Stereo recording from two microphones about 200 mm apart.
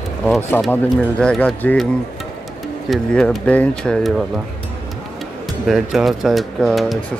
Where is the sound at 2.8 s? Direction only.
Centre (ahead or behind).